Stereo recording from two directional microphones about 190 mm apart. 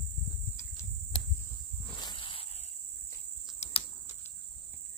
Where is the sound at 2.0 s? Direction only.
25° left (ahead or behind).